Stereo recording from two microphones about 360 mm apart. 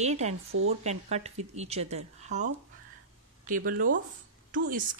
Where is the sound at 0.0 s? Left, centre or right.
Centre.